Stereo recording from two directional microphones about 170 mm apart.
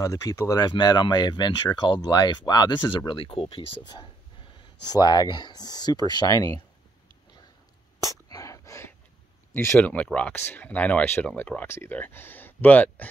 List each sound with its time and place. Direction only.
0.0 s speech: 20° left (ahead or behind)
8.0 s whispering: 20° left (ahead or behind)
9.5 s speech: 15° left (ahead or behind)